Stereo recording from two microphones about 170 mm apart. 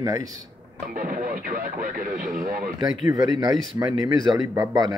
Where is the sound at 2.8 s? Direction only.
25° right (ahead or behind).